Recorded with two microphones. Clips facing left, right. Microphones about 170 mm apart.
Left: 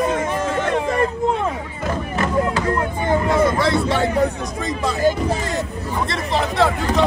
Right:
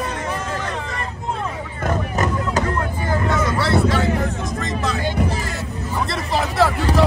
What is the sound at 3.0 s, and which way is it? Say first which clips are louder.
Speech: left 5 dB; 25° left (ahead or behind).